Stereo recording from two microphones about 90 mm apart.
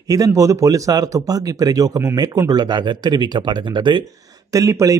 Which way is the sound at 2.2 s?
50° right (ahead or behind).